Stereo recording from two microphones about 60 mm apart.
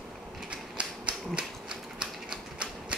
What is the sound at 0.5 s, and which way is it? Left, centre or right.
Typewriter, centre.